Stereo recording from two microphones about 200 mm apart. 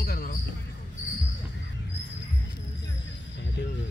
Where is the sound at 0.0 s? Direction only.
50° left (ahead or behind).